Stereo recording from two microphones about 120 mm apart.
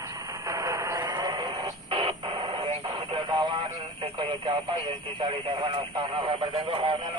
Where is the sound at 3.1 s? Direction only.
40° right (ahead or behind).